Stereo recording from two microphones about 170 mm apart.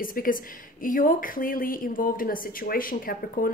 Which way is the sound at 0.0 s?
55° left (ahead or behind).